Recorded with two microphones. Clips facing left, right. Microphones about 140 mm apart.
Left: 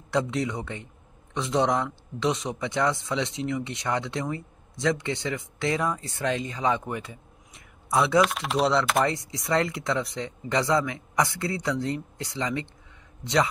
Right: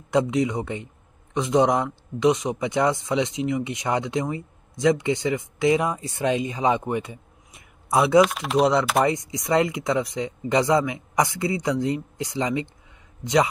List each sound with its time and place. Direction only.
0.1 s speech: 15° right (ahead or behind)
8.2 s speech: centre (ahead or behind)
9.0 s speech: 15° right (ahead or behind)